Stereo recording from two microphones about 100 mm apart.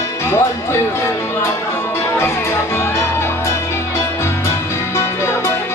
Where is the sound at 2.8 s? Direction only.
30° left (ahead or behind).